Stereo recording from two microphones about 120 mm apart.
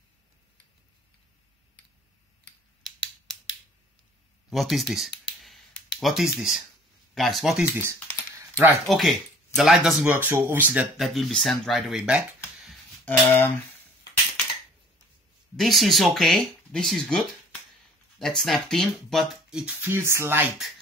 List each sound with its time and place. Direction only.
4.5 s a sound: centre (ahead or behind)
7.2 s speech: centre (ahead or behind)
8.4 s keys jangling: 20° right (ahead or behind)
8.8 s speech: centre (ahead or behind)
10.1 s speech: 15° right (ahead or behind)
11.1 s speech: centre (ahead or behind)
13.0 s cutlery: 15° left (ahead or behind)
15.5 s speech: centre (ahead or behind)
19.5 s speech: 10° right (ahead or behind)
19.9 s speech: 20° right (ahead or behind)